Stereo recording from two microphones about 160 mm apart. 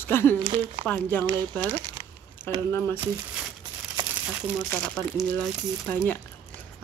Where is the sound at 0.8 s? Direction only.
10° left (ahead or behind).